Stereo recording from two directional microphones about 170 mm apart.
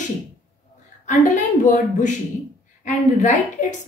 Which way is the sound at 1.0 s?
45° left (ahead or behind).